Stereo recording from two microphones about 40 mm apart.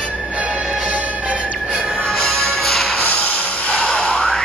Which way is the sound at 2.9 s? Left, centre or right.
Left.